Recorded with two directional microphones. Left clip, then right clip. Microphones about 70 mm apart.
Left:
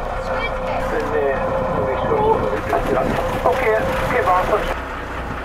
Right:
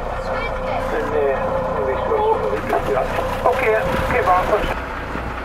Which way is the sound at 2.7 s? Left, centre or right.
Centre.